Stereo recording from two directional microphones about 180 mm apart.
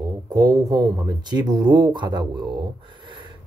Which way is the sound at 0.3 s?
20° right (ahead or behind).